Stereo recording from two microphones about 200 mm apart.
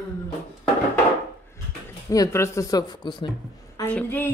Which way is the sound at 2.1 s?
15° left (ahead or behind).